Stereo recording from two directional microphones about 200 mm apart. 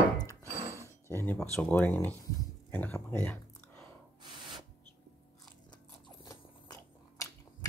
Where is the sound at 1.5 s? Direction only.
5° left (ahead or behind).